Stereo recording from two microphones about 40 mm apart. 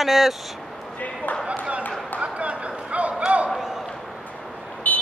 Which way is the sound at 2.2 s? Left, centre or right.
Right.